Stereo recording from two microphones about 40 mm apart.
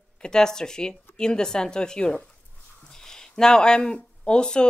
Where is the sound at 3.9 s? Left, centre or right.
Left.